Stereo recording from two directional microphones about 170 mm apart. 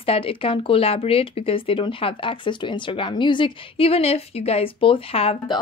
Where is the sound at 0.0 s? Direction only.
35° left (ahead or behind).